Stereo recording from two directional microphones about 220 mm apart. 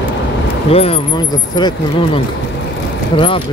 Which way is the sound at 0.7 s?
25° left (ahead or behind).